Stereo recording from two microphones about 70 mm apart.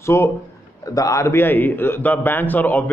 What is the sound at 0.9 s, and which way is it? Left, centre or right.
Speech, left.